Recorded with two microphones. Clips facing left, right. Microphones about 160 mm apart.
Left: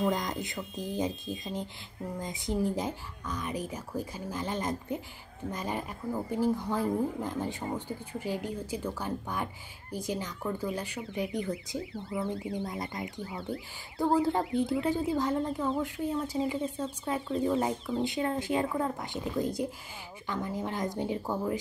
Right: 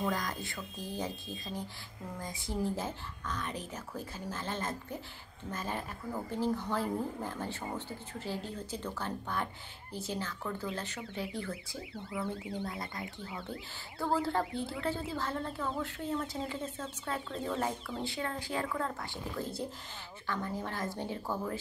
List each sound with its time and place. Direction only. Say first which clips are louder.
0.0 s a woman's voice: left 5 dB; 20° left (ahead or behind)